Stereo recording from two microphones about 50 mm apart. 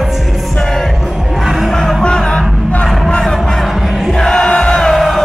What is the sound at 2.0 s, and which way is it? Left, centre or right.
Music, centre.